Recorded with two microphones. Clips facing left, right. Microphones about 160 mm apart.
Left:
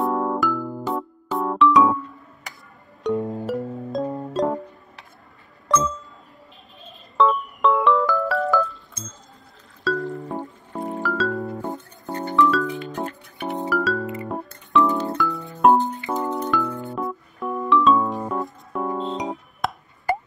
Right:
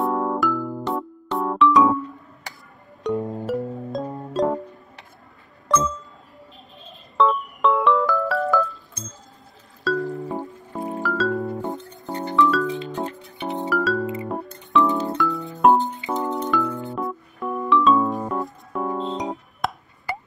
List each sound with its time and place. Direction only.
0.0 s music: centre (ahead or behind)
3.0 s music: centre (ahead or behind)
5.7 s music: centre (ahead or behind)
7.2 s music: centre (ahead or behind)
11.8 s music: 20° right (ahead or behind)
12.3 s music: centre (ahead or behind)
12.9 s music: 20° right (ahead or behind)
13.6 s music: centre (ahead or behind)
20.1 s a sound: 45° left (ahead or behind)